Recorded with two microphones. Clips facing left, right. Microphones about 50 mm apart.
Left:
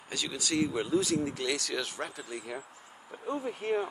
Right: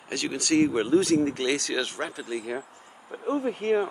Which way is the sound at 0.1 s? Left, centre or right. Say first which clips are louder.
Right 7 dB; right.